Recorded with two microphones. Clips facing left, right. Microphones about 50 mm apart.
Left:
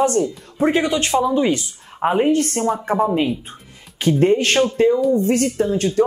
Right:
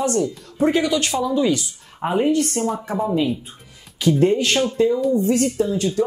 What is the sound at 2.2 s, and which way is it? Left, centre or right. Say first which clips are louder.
Speech: left 2 dB; left.